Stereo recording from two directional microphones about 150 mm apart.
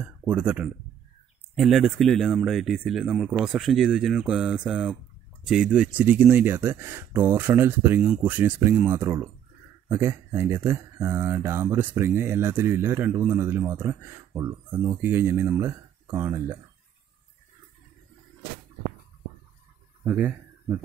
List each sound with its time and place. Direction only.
0.0 s speech: 10° right (ahead or behind)
20.0 s speech: 10° right (ahead or behind)